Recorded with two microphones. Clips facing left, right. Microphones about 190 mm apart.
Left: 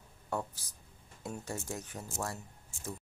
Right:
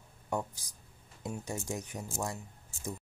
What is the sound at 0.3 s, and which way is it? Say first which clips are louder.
Speech: right 2 dB; 15° right (ahead or behind).